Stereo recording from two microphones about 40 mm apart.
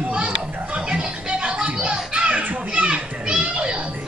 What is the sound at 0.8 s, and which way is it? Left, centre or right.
Music, right.